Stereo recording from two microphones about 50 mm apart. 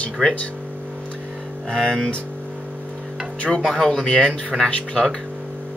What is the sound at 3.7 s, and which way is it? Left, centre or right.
Speech, centre.